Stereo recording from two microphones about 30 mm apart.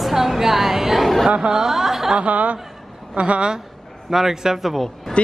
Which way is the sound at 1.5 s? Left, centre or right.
Centre.